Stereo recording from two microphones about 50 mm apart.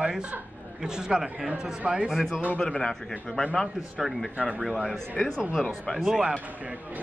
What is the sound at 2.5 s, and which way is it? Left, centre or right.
Speech, centre.